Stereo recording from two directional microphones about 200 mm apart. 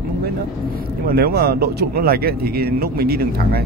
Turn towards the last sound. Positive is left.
turn(degrees=-50)  # may be behind; listen again after turning